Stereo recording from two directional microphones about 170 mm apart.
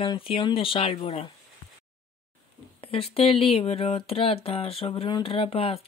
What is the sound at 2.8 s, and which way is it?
Speech, 35° left (ahead or behind).